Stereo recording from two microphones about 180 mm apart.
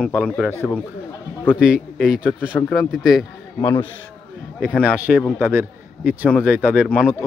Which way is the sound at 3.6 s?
20° left (ahead or behind).